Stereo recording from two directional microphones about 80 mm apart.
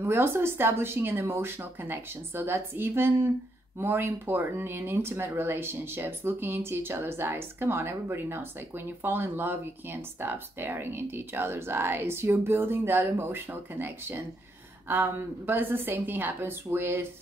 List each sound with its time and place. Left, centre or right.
0.0 s speech: right